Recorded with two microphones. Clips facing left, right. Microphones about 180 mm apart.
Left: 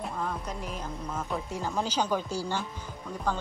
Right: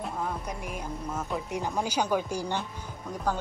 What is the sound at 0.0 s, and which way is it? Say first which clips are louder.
Speech: right 1 dB; 10° right (ahead or behind).